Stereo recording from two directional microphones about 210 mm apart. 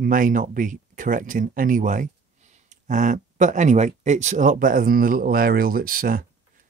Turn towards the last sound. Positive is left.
turn(degrees=-40)  # may be behind; listen again after turning